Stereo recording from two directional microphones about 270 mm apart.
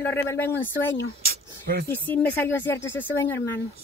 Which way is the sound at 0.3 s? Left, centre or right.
Centre.